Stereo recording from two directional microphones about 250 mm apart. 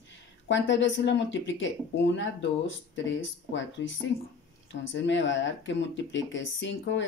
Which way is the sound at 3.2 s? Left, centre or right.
Left.